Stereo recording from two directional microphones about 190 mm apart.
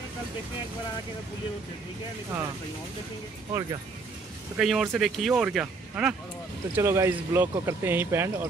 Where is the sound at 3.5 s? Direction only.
15° right (ahead or behind).